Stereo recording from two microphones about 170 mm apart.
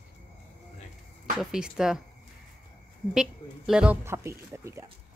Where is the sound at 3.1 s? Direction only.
5° right (ahead or behind).